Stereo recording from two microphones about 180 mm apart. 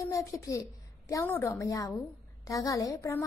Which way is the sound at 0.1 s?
15° left (ahead or behind).